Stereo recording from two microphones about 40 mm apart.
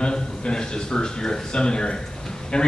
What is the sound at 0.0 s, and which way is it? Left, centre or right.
A man's voice, left.